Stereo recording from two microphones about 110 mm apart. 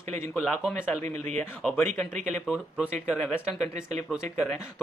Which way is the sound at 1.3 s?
10° left (ahead or behind).